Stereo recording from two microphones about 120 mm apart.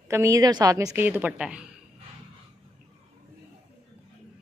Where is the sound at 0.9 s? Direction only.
15° right (ahead or behind).